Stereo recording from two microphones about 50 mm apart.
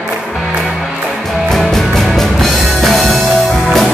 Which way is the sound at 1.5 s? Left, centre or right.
Centre.